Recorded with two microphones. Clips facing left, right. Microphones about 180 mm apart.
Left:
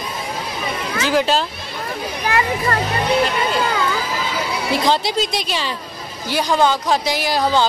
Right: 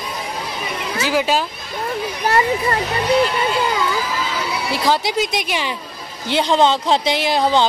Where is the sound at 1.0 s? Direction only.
10° right (ahead or behind).